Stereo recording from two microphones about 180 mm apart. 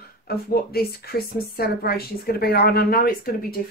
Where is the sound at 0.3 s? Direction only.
60° left (ahead or behind).